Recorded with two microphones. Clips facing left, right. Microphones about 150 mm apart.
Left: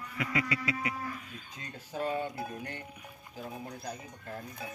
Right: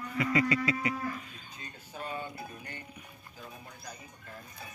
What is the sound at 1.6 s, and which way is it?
Speech, 90° left.